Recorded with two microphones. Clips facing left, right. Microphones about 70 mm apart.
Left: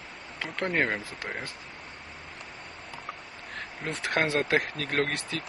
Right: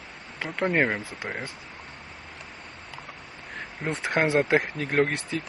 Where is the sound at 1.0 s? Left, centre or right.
Right.